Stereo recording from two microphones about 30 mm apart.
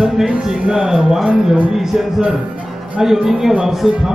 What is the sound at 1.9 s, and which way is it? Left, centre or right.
Speech, centre.